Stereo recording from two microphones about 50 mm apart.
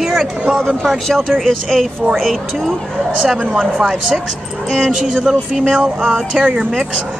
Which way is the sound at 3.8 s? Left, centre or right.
Centre.